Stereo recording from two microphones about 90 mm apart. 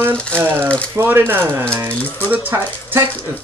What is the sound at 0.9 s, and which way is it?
Speech, 25° right (ahead or behind).